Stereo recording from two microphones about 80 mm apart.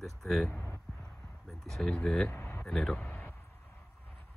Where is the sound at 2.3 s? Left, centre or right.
Left.